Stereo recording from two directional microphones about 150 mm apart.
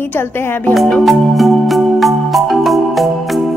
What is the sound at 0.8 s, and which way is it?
Music, 5° left (ahead or behind).